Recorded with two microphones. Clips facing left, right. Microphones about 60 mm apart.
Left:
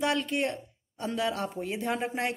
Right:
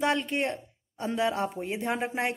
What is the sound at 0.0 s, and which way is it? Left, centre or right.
Speech, right.